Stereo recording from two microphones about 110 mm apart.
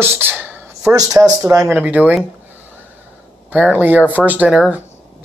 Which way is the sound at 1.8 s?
15° right (ahead or behind).